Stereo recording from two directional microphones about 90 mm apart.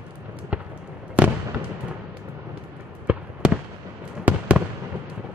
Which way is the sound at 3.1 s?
15° right (ahead or behind).